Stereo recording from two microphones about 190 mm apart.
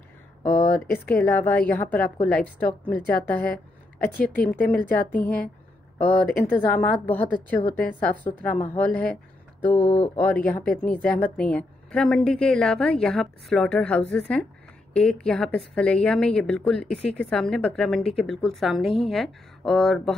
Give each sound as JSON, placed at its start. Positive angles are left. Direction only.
{"t": 0.6, "sound": "a woman's voice", "side_deg": 10}
{"t": 6.3, "sound": "a woman's voice", "side_deg": 10}